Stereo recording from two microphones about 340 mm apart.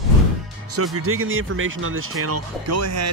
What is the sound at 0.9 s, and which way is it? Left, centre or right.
Speech, right.